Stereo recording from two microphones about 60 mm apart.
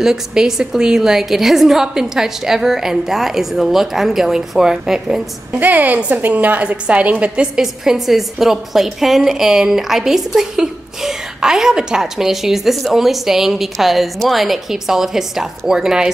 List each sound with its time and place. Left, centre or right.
0.0 s a woman's voice: centre
5.6 s a woman's voice: right
7.6 s a woman's voice: centre